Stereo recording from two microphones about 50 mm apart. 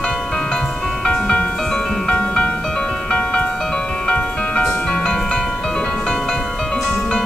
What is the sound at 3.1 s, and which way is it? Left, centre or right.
Music, left.